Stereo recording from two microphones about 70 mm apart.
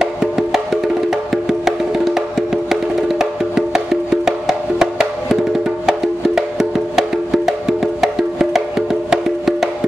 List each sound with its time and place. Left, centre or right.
0.0 s music: centre